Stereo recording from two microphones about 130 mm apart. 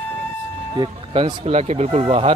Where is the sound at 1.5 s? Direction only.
55° right (ahead or behind).